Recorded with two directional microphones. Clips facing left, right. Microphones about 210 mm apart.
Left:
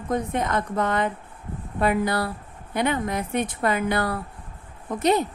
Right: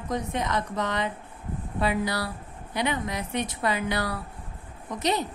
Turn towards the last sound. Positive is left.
turn(degrees=55)  # may be behind; listen again after turning